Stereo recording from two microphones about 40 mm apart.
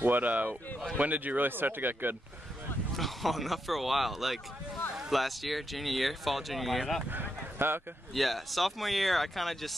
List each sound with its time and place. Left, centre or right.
0.0 s speech: right
3.0 s speech: centre
7.1 s a sound: right
8.1 s speech: centre